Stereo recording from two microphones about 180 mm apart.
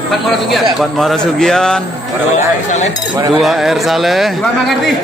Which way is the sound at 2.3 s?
40° left (ahead or behind).